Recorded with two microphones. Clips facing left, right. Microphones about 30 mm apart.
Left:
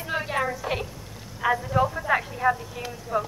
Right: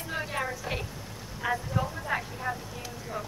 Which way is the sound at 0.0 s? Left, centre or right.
Centre.